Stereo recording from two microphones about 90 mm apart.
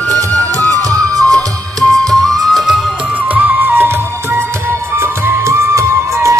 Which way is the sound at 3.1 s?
20° right (ahead or behind).